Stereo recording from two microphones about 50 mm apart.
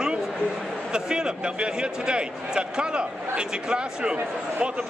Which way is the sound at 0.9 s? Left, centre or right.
Centre.